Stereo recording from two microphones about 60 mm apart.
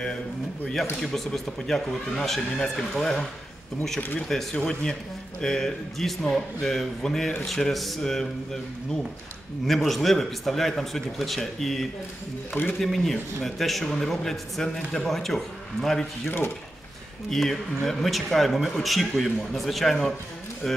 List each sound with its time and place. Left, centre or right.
1.0 s speech: centre
4.3 s a man's voice: centre
9.7 s speech: centre
16.3 s speech: left
17.3 s speech: centre